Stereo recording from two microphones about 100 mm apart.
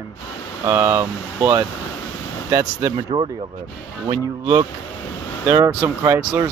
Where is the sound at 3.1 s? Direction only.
60° right (ahead or behind).